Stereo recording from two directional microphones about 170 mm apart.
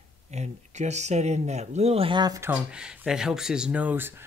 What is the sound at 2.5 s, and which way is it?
Speech, 5° right (ahead or behind).